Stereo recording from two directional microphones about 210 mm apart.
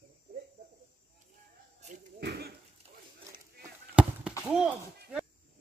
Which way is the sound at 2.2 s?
50° right (ahead or behind).